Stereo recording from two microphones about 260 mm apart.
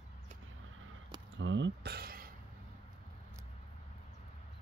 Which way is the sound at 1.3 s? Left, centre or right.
Right.